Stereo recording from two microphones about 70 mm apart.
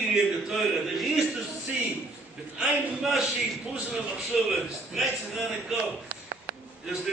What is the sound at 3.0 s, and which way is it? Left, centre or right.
A man's voice, centre.